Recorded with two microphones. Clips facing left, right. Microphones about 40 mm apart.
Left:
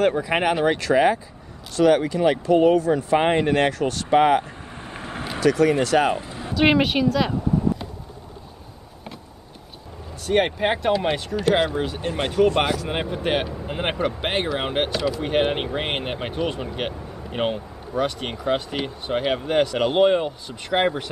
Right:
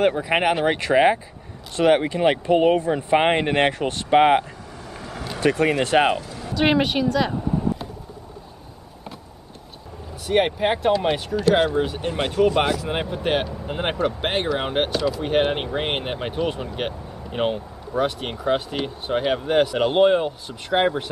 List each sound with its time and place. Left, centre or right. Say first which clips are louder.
0.0 s speech: right 1 dB; centre
0.7 s speech: right 1 dB; right
4.7 s vehicle: left 2 dB; left
5.4 s speech: left 1 dB; right
6.1 s speech: even; left
6.5 s speech: left 1 dB; centre
10.2 s speech: right 1 dB; centre